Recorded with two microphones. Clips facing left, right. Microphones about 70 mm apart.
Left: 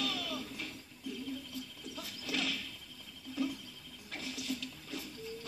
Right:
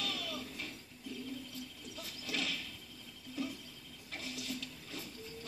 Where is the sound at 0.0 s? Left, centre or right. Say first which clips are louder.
Left 3 dB; right.